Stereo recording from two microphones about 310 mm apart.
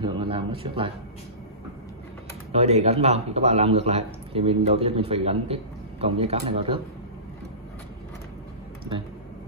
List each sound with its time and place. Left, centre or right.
0.0 s speech: centre
2.5 s a man's voice: centre